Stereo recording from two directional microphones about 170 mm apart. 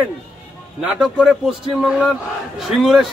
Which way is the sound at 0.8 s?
5° right (ahead or behind).